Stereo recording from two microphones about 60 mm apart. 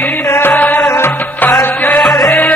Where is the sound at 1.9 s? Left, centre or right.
Centre.